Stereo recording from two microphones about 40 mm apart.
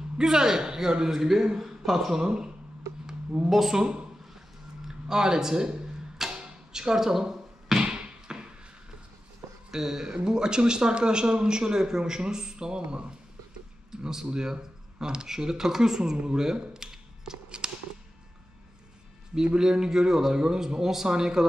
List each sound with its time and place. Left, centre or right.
0.2 s speech: centre
2.1 s speech: centre
3.4 s speech: centre
3.8 s speech: right
4.8 s a sound: centre
6.4 s music: centre
7.8 s a sound: right
9.7 s speech: centre
14.0 s speech: centre
16.2 s a sound: centre
19.6 s speech: centre